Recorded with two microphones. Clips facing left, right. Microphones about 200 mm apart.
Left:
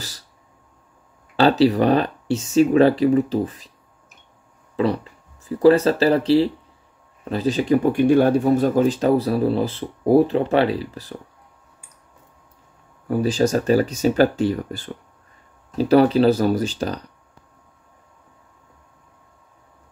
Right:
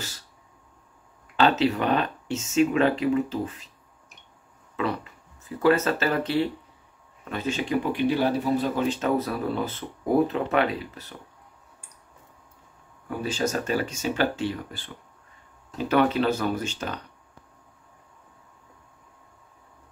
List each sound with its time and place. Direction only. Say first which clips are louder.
1.3 s speech: left 6 dB; 35° left (ahead or behind)
4.7 s speech: left 7 dB; 35° left (ahead or behind)
13.2 s speech: left 8 dB; 35° left (ahead or behind)